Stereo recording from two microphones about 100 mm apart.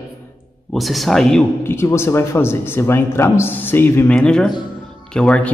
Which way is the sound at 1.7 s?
25° left (ahead or behind).